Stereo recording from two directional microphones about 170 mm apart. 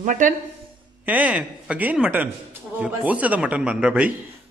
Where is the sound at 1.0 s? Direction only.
10° right (ahead or behind).